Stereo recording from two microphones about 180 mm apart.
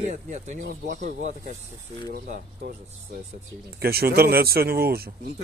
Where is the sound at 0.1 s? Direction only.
45° right (ahead or behind).